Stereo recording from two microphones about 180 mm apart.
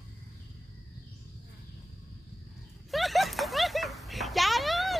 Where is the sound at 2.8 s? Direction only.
Centre (ahead or behind).